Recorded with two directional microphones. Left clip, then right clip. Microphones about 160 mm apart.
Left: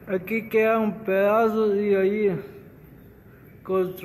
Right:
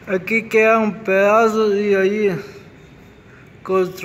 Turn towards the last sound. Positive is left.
turn(degrees=-10)  # may be behind; listen again after turning